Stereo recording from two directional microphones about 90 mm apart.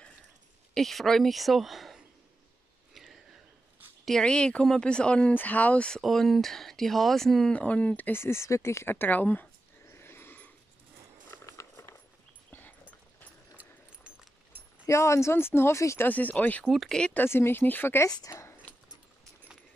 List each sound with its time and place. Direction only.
0.7 s speech: centre (ahead or behind)
2.9 s a sound: centre (ahead or behind)
4.0 s speech: 5° left (ahead or behind)
5.9 s speech: centre (ahead or behind)
7.5 s speech: 15° left (ahead or behind)
11.4 s a sound: 35° left (ahead or behind)
12.4 s dog: 20° left (ahead or behind)
14.9 s speech: 35° left (ahead or behind)
16.1 s speech: 20° left (ahead or behind)
16.6 s speech: centre (ahead or behind)
17.2 s speech: 25° left (ahead or behind)
18.1 s speech: 35° left (ahead or behind)